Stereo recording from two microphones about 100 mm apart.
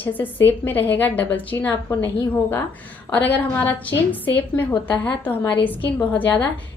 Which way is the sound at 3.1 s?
15° left (ahead or behind).